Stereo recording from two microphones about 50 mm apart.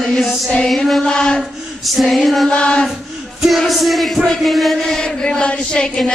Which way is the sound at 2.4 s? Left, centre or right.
Left.